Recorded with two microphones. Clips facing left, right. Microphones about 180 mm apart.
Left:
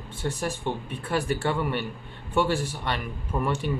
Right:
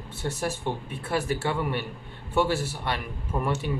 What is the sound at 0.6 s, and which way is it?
Speech, 5° right (ahead or behind).